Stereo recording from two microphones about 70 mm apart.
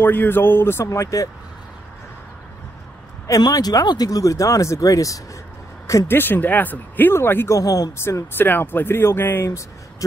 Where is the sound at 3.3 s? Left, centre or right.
Left.